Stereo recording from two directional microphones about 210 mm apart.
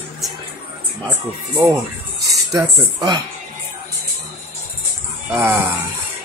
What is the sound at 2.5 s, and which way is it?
Speech, 15° right (ahead or behind).